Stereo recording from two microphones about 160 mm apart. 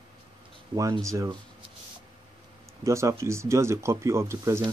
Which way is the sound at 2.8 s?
20° right (ahead or behind).